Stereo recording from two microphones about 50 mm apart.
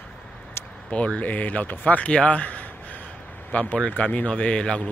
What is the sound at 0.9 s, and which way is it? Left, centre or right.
Speech, left.